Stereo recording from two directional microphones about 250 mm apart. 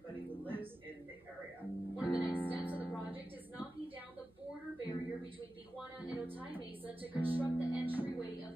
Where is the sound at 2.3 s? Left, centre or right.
Centre.